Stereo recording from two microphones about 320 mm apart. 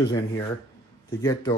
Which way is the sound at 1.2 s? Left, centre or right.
Centre.